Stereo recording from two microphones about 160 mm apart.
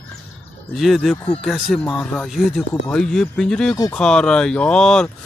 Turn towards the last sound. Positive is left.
turn(degrees=5)  # may be behind; listen again after turning